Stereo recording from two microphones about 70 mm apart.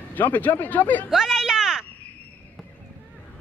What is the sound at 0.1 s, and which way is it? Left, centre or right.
Speech, left.